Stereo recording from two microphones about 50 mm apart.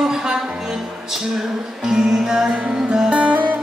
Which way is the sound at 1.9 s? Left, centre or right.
Centre.